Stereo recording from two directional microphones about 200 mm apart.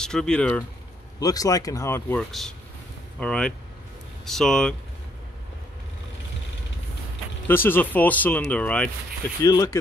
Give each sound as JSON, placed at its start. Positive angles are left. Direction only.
{"t": 0.0, "sound": "speech", "side_deg": 5}
{"t": 1.2, "sound": "speech", "side_deg": 20}
{"t": 7.4, "sound": "speech", "side_deg": 10}
{"t": 9.4, "sound": "speech", "side_deg": 15}